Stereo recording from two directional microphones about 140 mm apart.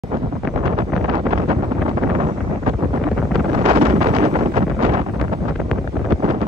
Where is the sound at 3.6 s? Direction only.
45° right (ahead or behind).